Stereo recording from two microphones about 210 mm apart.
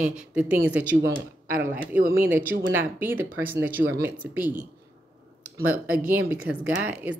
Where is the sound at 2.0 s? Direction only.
40° right (ahead or behind).